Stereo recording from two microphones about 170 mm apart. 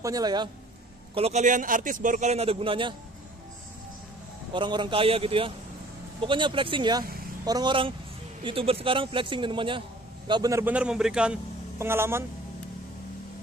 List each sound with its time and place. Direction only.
0.0 s a man's voice: 20° right (ahead or behind)
1.1 s a man's voice: 40° right (ahead or behind)
4.6 s a man's voice: 30° right (ahead or behind)
10.6 s a man's voice: 5° right (ahead or behind)